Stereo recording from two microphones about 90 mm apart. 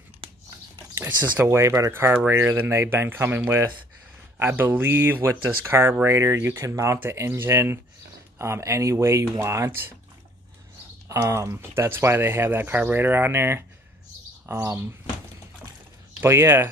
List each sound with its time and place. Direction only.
0.2 s a sound: 80° right
0.9 s speech: 25° right (ahead or behind)
11.1 s speech: 35° right (ahead or behind)
16.2 s speech: 25° right (ahead or behind)